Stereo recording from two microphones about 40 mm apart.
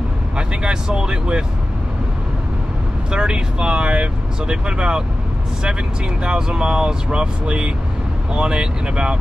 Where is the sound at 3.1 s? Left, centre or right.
Right.